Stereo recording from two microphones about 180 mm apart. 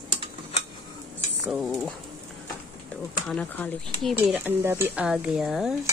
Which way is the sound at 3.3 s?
5° left (ahead or behind).